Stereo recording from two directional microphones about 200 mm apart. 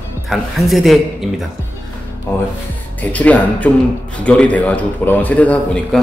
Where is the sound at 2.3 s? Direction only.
10° left (ahead or behind).